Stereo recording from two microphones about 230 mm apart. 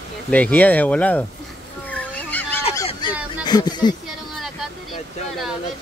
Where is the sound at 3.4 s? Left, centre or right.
Centre.